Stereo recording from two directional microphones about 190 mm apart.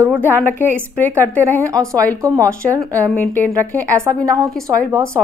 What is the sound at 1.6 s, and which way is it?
Speech, 15° right (ahead or behind).